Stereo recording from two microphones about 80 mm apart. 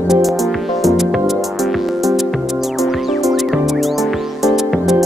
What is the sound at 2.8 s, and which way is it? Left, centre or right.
Music, centre.